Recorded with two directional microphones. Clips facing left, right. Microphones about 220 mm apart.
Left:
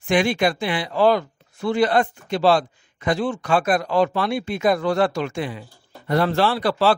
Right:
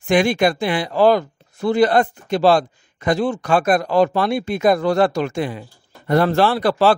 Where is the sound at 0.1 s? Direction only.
45° right (ahead or behind).